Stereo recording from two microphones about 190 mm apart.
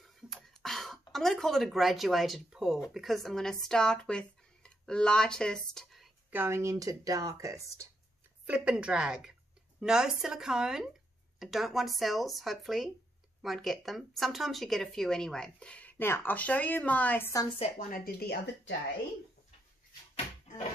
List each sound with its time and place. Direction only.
0.0 s beatboxing: centre (ahead or behind)
1.1 s speech: centre (ahead or behind)
6.3 s speech: 15° right (ahead or behind)
8.5 s speech: 5° right (ahead or behind); by 17.5 s 15° left (ahead or behind)
17.6 s speech: 40° left (ahead or behind)